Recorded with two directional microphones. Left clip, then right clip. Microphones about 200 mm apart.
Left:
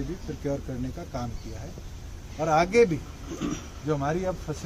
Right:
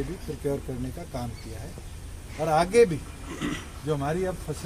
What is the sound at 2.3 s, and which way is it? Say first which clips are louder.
Speech: right 1 dB; 10° right (ahead or behind).